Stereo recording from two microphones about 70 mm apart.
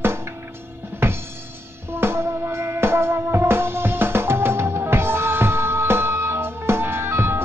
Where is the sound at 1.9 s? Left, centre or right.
Right.